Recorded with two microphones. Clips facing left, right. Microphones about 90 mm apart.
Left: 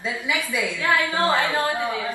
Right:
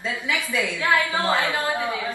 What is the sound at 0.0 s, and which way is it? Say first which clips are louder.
Speech: left 1 dB; 15° left (ahead or behind).